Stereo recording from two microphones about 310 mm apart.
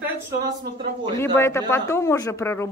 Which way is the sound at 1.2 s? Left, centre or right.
Centre.